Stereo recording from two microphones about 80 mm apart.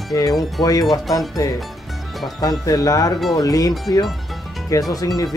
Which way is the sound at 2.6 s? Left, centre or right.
Left.